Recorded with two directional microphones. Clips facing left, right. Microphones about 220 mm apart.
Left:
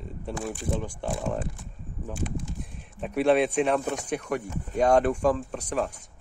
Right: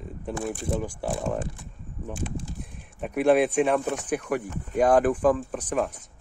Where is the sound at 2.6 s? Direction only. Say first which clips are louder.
Right 1 dB; centre (ahead or behind).